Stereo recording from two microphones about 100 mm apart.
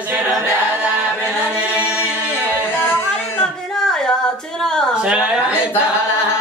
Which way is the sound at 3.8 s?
5° left (ahead or behind).